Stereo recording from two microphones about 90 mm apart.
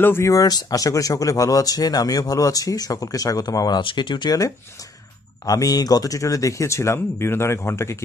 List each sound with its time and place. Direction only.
0.0 s speech: 30° left (ahead or behind); by 3.8 s 50° left (ahead or behind)
3.8 s speech: 60° left (ahead or behind)
5.5 s speech: 45° left (ahead or behind)